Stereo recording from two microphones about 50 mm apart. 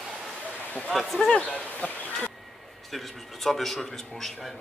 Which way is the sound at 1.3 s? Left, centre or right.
Left.